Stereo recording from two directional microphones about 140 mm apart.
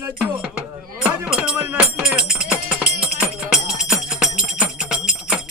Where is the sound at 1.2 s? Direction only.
5° right (ahead or behind).